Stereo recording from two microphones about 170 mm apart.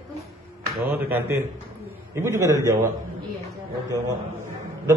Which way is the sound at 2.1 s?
20° right (ahead or behind).